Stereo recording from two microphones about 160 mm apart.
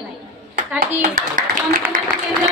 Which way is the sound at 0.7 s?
60° right (ahead or behind).